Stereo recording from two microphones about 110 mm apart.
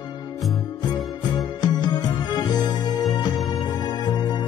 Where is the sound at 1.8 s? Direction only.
40° left (ahead or behind).